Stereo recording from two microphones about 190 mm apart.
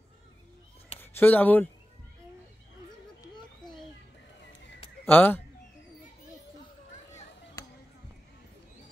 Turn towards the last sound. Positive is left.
turn(degrees=15)  # may be behind; listen again after turning